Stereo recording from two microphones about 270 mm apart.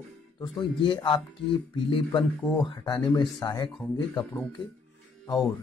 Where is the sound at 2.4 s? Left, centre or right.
Centre.